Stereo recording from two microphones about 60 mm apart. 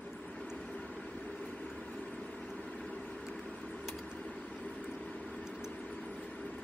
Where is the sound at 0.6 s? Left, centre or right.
Centre.